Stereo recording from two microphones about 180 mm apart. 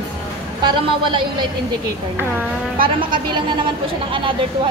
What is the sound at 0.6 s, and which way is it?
Speech, 25° right (ahead or behind).